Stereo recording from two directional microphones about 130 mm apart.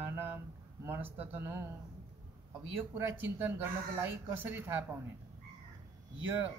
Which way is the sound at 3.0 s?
15° right (ahead or behind).